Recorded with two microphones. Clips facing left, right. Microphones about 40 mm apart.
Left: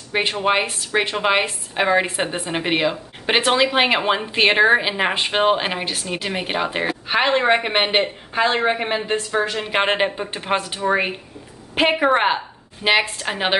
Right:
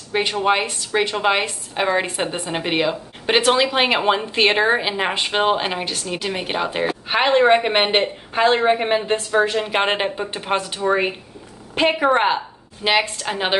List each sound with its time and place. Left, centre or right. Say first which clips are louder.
0.1 s a woman's voice: right 1 dB; centre
7.1 s a woman's voice: right 3 dB; centre